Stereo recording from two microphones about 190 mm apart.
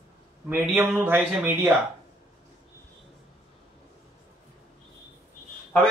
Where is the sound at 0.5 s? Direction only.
10° right (ahead or behind).